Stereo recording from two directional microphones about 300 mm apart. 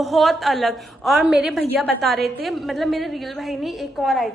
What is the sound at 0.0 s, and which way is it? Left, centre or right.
A woman's voice, centre.